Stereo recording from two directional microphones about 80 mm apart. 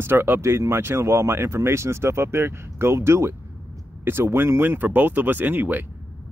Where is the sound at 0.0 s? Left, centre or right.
Right.